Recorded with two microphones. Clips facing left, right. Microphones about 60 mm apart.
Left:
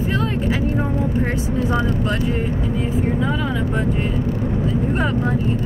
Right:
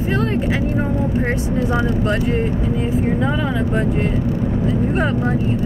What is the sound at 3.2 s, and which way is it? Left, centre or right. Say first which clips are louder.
Speech: right 2 dB; right.